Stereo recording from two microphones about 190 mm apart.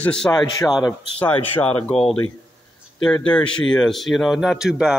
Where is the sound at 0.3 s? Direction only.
20° left (ahead or behind).